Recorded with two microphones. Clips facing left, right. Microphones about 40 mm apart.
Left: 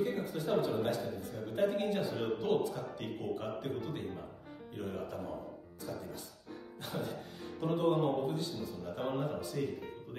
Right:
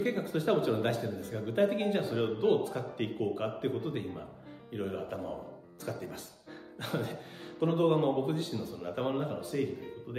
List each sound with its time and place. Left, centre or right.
0.0 s speech: right
2.6 s a man's voice: right
5.8 s speech: right